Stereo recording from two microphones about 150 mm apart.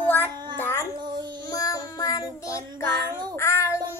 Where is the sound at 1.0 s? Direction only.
30° right (ahead or behind).